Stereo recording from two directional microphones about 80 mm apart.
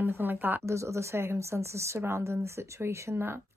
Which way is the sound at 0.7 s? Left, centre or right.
Right.